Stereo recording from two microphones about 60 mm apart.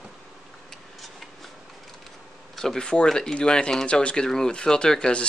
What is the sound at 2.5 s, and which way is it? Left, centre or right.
Speech, centre.